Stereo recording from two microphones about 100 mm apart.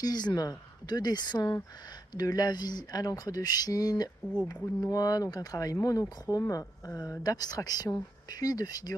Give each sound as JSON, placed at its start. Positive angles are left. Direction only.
{"t": 0.0, "sound": "speech", "side_deg": 45}